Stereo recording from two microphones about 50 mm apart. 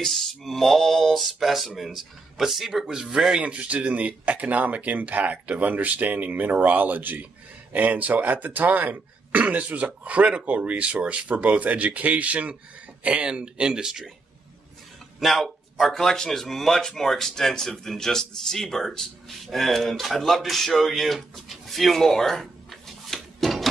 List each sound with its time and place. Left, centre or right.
0.0 s speech: centre
2.9 s speech: centre
3.5 s speech: right; by 14.1 s centre
15.1 s speech: centre